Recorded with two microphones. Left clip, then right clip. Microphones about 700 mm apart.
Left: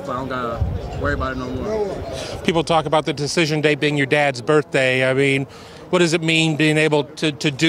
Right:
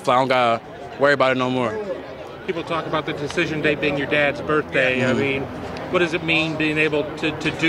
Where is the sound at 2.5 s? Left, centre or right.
Left.